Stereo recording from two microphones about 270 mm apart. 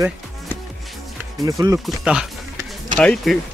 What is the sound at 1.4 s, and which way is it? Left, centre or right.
Speech, centre.